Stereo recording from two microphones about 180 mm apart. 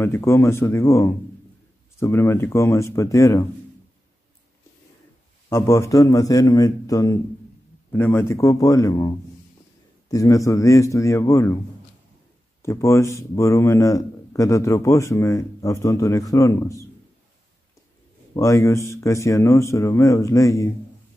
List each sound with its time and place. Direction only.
0.0 s speech: 15° left (ahead or behind)
5.5 s speech: 15° left (ahead or behind)
12.6 s speech: 15° left (ahead or behind)
18.3 s speech: 15° left (ahead or behind)